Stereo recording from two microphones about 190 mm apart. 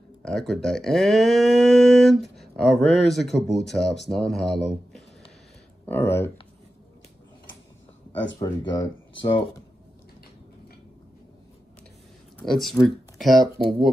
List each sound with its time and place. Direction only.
0.2 s speech: centre (ahead or behind)
8.4 s speech: 20° left (ahead or behind)
12.4 s speech: centre (ahead or behind)